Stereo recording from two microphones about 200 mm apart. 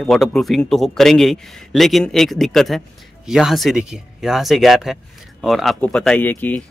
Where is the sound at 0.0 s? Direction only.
Centre (ahead or behind).